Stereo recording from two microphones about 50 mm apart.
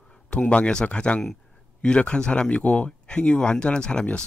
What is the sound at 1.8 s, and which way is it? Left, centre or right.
Speech, left.